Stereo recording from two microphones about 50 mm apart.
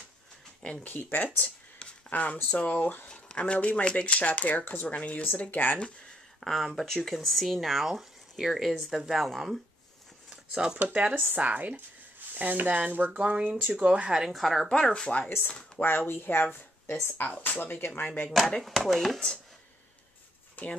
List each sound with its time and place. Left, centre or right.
0.8 s speech: left
3.1 s a sound: centre
3.5 s speech: left
5.5 s speech: left
6.4 s speech: centre
10.3 s a sound: centre
10.8 s speech: right
14.3 s speech: centre
14.8 s speech: centre
15.2 s speech: left
18.0 s speech: left
18.6 s speech: centre
20.6 s speech: left